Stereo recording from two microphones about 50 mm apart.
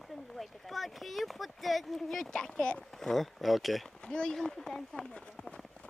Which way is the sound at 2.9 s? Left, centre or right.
Centre.